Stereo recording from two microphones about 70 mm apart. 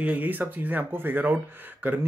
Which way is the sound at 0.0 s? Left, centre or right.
Right.